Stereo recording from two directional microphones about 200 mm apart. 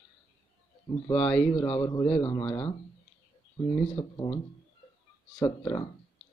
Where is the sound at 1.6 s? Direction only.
25° left (ahead or behind).